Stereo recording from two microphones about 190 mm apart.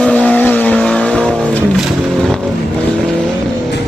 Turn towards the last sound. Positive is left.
turn(degrees=0)  # may be behind; listen again after turning